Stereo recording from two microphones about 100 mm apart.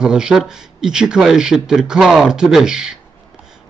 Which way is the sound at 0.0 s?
5° right (ahead or behind).